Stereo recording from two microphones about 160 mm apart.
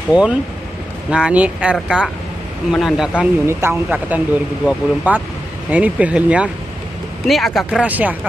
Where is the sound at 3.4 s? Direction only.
15° right (ahead or behind).